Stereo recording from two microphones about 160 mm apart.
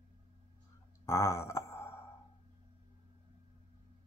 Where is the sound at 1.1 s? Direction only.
15° left (ahead or behind).